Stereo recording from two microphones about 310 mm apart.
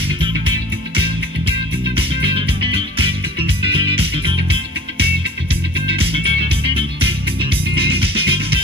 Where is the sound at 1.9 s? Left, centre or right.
Centre.